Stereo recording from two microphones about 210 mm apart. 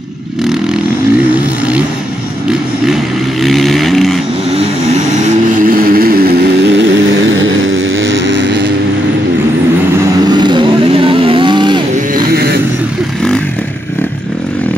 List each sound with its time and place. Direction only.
3.4 s vehicle: centre (ahead or behind)
5.6 s vehicle: 45° right (ahead or behind)
7.4 s vehicle: 65° right (ahead or behind)
10.2 s vehicle: 20° right (ahead or behind)
12.3 s music: 45° right (ahead or behind)